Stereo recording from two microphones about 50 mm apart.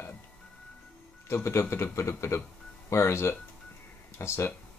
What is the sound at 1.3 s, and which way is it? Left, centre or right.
Speech, left.